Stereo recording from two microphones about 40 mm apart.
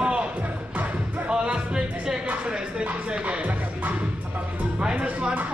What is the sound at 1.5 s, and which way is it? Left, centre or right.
Music, centre.